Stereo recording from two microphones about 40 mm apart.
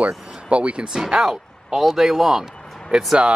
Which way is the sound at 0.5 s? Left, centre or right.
Right.